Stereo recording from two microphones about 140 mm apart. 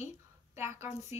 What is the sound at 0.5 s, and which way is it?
Speech, 15° right (ahead or behind).